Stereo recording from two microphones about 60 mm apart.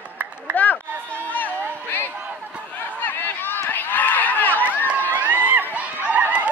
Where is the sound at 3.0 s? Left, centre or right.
Left.